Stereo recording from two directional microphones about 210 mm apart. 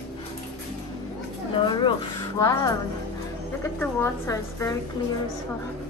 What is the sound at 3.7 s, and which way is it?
A woman's voice, 10° left (ahead or behind).